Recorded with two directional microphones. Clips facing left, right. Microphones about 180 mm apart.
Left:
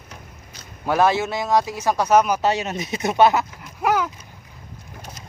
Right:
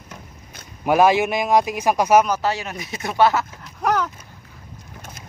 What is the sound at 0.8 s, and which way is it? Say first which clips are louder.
Speech: right 3 dB; 15° right (ahead or behind).